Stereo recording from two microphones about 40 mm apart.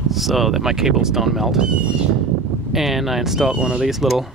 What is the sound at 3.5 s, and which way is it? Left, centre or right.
Speech, right.